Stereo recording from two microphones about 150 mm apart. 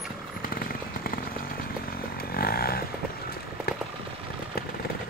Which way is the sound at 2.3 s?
90° left.